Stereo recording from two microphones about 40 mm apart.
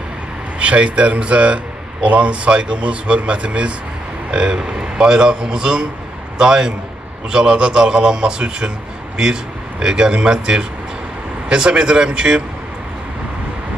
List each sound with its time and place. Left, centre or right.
0.6 s a man's voice: right